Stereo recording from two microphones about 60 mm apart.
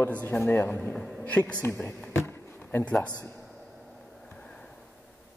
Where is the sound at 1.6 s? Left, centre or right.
Left.